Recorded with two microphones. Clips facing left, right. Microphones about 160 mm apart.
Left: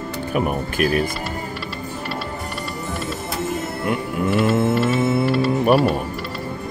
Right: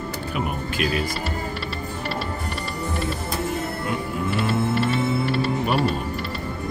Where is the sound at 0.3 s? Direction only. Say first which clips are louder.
Left 7 dB; 50° left (ahead or behind).